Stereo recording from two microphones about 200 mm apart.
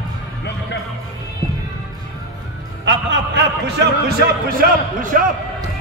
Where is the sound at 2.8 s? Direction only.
60° right (ahead or behind).